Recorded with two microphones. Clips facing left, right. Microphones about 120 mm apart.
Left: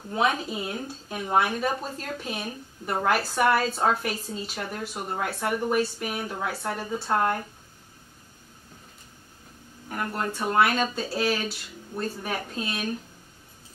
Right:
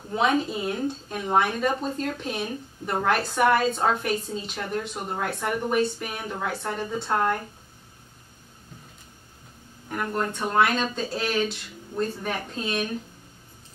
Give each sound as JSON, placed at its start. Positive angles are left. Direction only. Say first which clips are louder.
{"t": 0.1, "sound": "speech", "louder": "right 2 dB", "side_deg": 5}
{"t": 9.8, "sound": "speech", "louder": "right 2 dB", "side_deg": 5}